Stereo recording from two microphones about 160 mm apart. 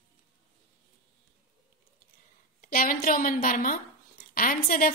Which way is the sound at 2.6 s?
60° left (ahead or behind).